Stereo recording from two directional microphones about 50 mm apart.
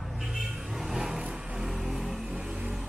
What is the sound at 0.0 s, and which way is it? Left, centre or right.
Vehicle, centre.